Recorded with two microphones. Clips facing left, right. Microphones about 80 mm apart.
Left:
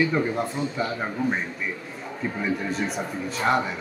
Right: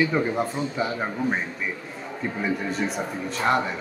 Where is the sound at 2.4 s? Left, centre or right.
Centre.